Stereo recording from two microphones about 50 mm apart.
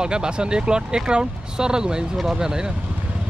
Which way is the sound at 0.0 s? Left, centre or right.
Centre.